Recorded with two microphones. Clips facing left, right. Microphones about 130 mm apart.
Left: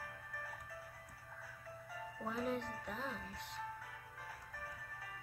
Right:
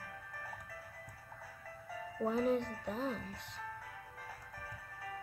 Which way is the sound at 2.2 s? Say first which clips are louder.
Right 8 dB; 30° right (ahead or behind).